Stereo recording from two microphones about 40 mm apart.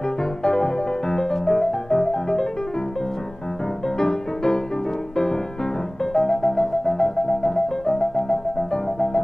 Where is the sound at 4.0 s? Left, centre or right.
Centre.